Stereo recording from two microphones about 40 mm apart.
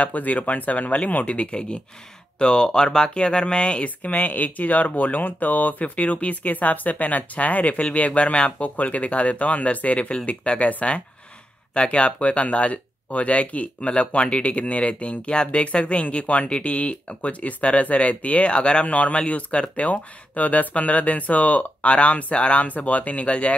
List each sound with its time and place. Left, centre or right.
0.0 s speech: left